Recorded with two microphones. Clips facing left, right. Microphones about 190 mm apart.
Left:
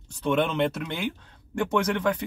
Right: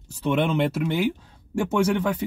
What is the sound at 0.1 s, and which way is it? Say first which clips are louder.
Speech: right 2 dB; 5° right (ahead or behind).